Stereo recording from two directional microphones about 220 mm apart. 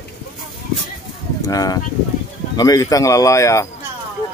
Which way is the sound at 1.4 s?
15° left (ahead or behind).